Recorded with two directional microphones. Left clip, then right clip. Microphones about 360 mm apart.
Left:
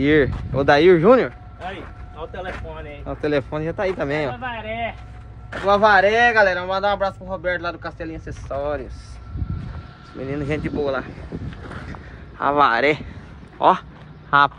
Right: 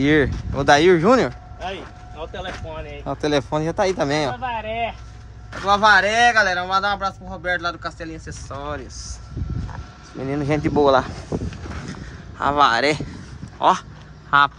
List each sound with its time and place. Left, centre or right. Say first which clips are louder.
0.0 s speech: left 1 dB; centre
1.8 s vehicle: right 1 dB; right
3.1 s speech: right 1 dB; centre
5.5 s a man's voice: even; centre
10.1 s speech: right 3 dB; centre
11.9 s a sound: right 1 dB; centre
13.6 s a man's voice: left 1 dB; centre